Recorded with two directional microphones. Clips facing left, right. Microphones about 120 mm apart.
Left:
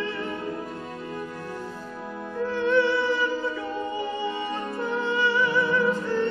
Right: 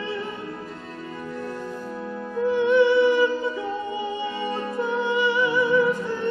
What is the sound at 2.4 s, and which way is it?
Music, 15° right (ahead or behind).